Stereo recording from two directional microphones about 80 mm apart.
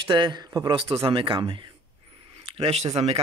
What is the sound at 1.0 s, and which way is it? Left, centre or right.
Speech, right.